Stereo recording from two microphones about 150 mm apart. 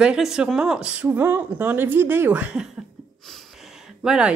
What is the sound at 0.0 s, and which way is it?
Speech, 5° right (ahead or behind).